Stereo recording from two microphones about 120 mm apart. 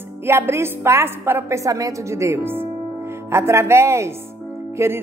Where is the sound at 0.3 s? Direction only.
20° right (ahead or behind).